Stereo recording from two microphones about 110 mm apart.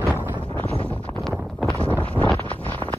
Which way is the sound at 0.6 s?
60° right (ahead or behind).